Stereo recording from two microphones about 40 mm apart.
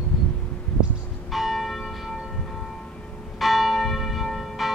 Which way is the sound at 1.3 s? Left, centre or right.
Centre.